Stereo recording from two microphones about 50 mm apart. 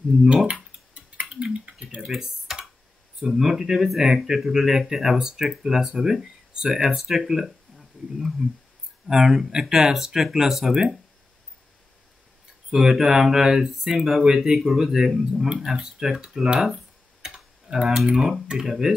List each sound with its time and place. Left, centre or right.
1.3 s a sound: centre
2.0 s speech: centre
12.7 s speech: centre
16.5 s typing: centre
18.5 s speech: centre